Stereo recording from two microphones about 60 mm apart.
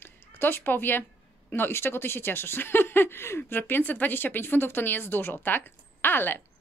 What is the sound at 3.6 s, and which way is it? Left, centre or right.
A woman's voice, left.